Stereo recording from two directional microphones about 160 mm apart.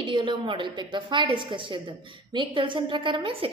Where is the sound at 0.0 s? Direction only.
30° right (ahead or behind).